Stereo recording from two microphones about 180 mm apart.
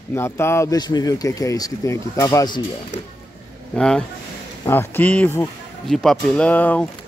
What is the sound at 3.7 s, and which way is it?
Speech, 5° left (ahead or behind).